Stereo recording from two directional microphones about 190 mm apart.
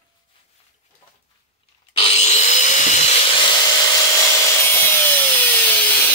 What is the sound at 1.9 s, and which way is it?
Wood, 30° left (ahead or behind).